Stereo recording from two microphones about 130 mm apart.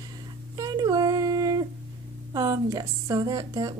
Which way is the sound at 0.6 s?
30° right (ahead or behind).